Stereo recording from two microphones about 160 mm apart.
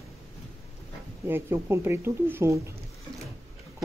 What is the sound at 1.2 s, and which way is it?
Speech, 15° right (ahead or behind).